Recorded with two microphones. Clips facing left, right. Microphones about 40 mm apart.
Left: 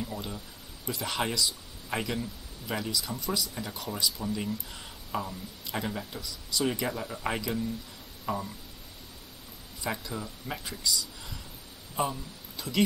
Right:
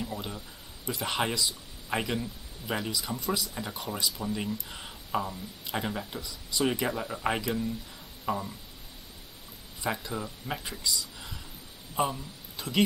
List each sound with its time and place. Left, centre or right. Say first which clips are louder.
0.8 s speech: right 1 dB; centre
9.8 s speech: right 2 dB; centre